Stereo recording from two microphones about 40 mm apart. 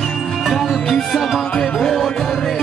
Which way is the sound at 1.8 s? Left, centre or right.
Centre.